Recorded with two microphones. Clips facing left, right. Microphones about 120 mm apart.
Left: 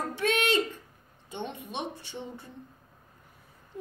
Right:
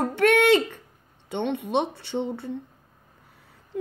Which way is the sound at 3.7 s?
90° right.